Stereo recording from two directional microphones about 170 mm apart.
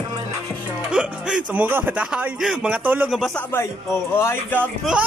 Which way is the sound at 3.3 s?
10° left (ahead or behind).